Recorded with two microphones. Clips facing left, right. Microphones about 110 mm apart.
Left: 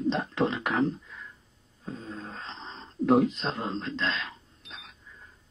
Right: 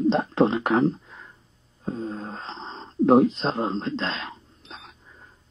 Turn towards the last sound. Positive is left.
turn(degrees=-35)  # may be behind; listen again after turning